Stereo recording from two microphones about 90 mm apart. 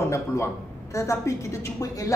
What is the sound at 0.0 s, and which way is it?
Speech, 30° left (ahead or behind).